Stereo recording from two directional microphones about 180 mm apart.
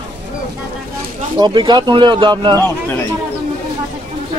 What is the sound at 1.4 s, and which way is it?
Speech, 25° right (ahead or behind).